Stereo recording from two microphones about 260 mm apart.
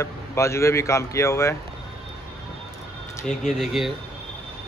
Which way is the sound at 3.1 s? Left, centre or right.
Centre.